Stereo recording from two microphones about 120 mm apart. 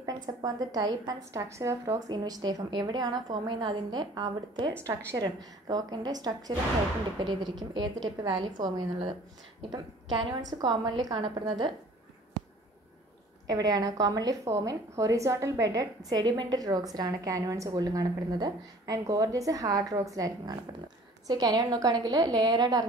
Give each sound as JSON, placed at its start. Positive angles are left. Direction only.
{"t": 0.0, "sound": "a woman's voice", "side_deg": -35}
{"t": 7.7, "sound": "a woman's voice", "side_deg": -40}
{"t": 12.4, "sound": "a sound", "side_deg": -35}
{"t": 13.5, "sound": "a woman's voice", "side_deg": -35}